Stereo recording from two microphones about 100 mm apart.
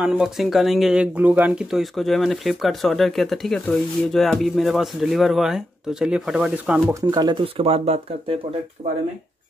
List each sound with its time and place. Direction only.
0.0 s speech: 5° right (ahead or behind)
6.9 s speech: 35° right (ahead or behind)
7.4 s speech: 70° right (ahead or behind)